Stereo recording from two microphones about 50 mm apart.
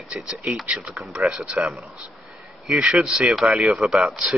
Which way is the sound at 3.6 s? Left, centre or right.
Centre.